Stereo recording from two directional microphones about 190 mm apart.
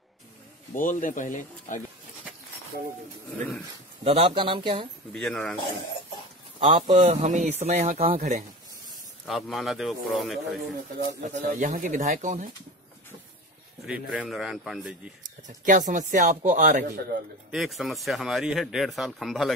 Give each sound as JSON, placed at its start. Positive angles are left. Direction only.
{"t": 0.7, "sound": "speech", "side_deg": 45}
{"t": 4.0, "sound": "speech", "side_deg": -30}
{"t": 5.1, "sound": "speech", "side_deg": 5}
{"t": 6.6, "sound": "a man's voice", "side_deg": -30}
{"t": 7.0, "sound": "speech", "side_deg": -40}
{"t": 9.2, "sound": "speech", "side_deg": 5}
{"t": 11.2, "sound": "speech", "side_deg": -40}
{"t": 13.8, "sound": "speech", "side_deg": -5}
{"t": 15.4, "sound": "speech", "side_deg": -40}
{"t": 17.5, "sound": "speech", "side_deg": 0}